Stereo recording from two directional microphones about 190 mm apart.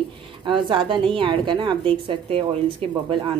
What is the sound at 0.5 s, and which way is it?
Speech, 25° right (ahead or behind).